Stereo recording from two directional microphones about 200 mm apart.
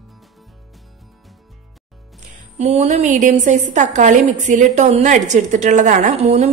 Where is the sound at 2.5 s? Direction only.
35° right (ahead or behind).